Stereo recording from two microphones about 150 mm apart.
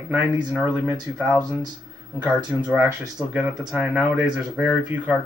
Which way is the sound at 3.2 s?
10° right (ahead or behind).